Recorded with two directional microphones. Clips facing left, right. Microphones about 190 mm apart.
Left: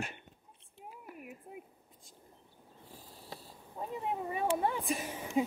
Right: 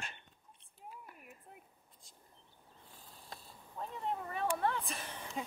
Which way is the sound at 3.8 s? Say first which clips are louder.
Left 3 dB; 10° left (ahead or behind).